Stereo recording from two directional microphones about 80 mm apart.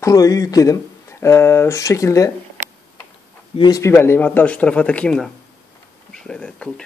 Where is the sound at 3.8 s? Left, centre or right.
Left.